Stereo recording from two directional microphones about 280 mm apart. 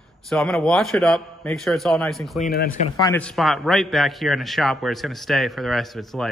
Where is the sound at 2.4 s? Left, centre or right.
Left.